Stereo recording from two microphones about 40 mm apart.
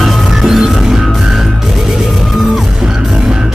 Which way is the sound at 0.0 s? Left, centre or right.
Centre.